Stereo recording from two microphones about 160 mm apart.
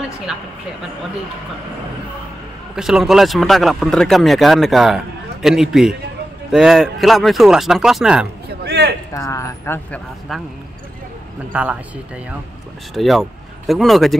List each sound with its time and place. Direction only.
0.3 s speech: 5° right (ahead or behind)
2.7 s speech: 5° right (ahead or behind)
8.6 s a sound: 90° right
9.1 s speech: 20° left (ahead or behind)
9.8 s speech: 5° left (ahead or behind)
11.5 s speech: 10° right (ahead or behind)
12.9 s speech: centre (ahead or behind)